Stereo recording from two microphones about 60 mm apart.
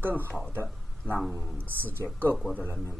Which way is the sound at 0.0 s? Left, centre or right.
Right.